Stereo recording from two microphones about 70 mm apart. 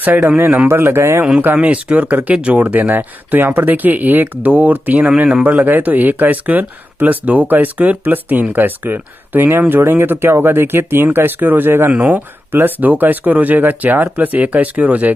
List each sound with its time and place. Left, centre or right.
0.4 s speech: right
0.7 s a man's voice: right
1.4 s speech: right